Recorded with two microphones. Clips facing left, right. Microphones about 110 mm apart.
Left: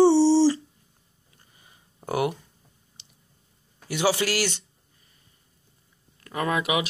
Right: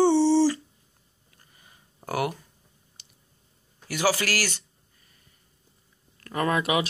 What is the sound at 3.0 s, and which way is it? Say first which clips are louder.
Clicking: left 2 dB; 25° left (ahead or behind).